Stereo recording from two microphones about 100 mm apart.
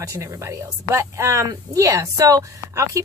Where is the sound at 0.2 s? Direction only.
30° right (ahead or behind).